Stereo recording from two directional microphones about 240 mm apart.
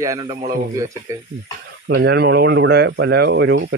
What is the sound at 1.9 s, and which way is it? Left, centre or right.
Speech, right.